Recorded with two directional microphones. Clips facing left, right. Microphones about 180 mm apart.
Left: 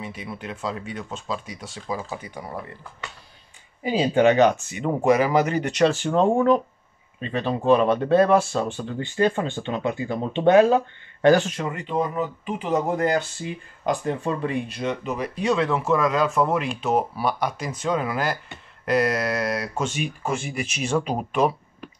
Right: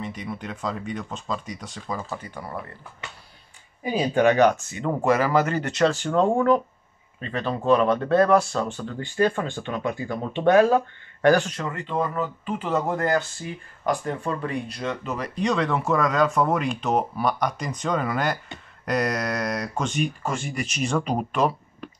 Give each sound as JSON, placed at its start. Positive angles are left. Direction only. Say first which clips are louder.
{"t": 0.0, "sound": "speech", "louder": "right 2 dB", "side_deg": 5}
{"t": 3.8, "sound": "speech", "louder": "left 2 dB", "side_deg": 25}